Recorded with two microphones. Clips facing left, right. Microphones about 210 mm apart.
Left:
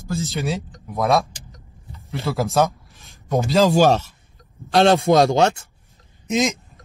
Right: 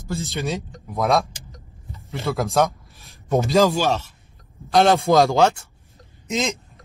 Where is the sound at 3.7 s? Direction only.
40° left (ahead or behind).